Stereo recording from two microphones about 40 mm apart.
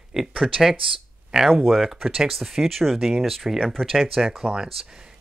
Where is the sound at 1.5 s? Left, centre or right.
Centre.